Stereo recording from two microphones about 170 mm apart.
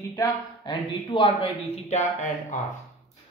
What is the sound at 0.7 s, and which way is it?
Speech, 30° left (ahead or behind).